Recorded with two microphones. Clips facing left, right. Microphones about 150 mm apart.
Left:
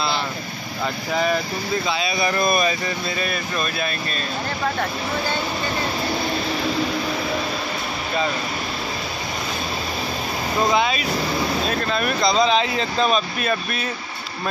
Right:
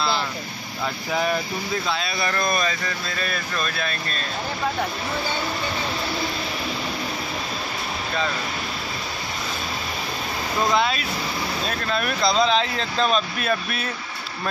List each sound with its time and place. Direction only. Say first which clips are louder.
1.9 s speech: left 4 dB; centre (ahead or behind)
10.7 s speech: left 2 dB; centre (ahead or behind)